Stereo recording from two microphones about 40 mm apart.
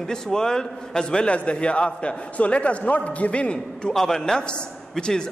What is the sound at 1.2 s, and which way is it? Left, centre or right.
A man's voice, left.